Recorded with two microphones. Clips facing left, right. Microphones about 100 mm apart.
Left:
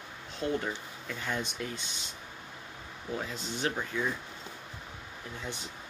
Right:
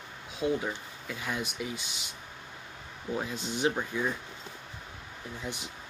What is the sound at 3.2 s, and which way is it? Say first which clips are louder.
Speech: right 3 dB; 15° right (ahead or behind).